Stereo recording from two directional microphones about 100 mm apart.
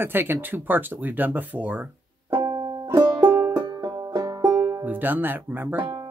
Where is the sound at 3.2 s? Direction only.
25° right (ahead or behind).